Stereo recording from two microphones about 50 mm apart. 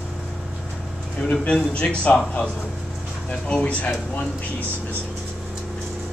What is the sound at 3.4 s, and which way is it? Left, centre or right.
Speech, left.